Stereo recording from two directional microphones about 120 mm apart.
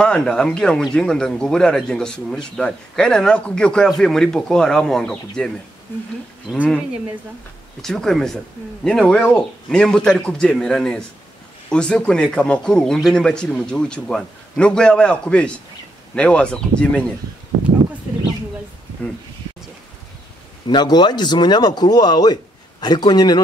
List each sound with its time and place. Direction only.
0.0 s a man's voice: 5° left (ahead or behind)
7.8 s a man's voice: 5° left (ahead or behind)
20.6 s speech: 35° left (ahead or behind)